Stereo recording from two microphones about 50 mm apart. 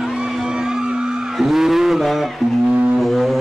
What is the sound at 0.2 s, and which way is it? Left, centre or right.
Music, centre.